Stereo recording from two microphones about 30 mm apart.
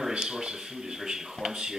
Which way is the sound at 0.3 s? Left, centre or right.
Right.